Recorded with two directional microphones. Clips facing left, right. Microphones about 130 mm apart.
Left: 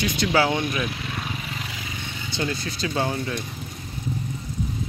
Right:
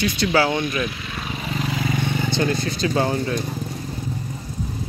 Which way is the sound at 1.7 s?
60° right (ahead or behind).